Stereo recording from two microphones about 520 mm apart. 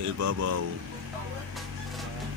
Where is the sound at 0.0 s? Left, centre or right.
Right.